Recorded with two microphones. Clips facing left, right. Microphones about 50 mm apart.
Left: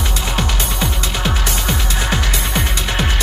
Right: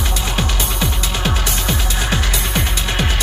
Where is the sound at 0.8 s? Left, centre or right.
Left.